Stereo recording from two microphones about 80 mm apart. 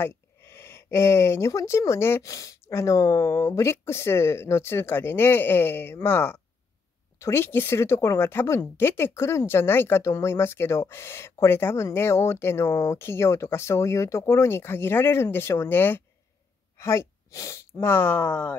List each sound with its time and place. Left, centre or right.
0.0 s speech: left